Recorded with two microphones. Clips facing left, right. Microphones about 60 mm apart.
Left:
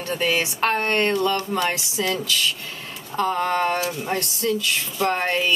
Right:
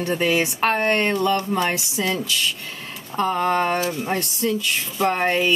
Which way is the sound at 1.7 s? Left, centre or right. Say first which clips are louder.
Right 1 dB; centre.